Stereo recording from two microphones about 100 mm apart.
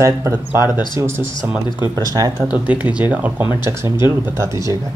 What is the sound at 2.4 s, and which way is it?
Speech, 10° right (ahead or behind).